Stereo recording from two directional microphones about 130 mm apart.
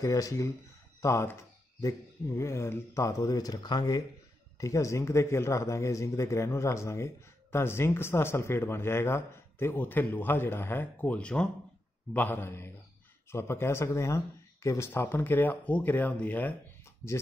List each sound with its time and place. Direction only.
0.0 s speech: 25° left (ahead or behind)